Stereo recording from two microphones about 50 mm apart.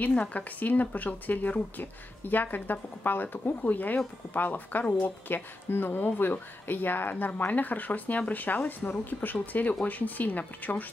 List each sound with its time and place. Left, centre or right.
0.2 s speech: left
5.3 s speech: left